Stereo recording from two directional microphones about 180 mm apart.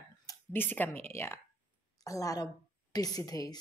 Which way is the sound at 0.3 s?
10° left (ahead or behind).